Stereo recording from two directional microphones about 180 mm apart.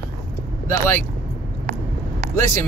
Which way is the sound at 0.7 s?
15° left (ahead or behind).